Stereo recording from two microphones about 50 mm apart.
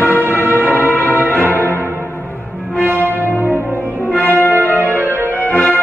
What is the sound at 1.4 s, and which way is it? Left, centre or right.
Music, left.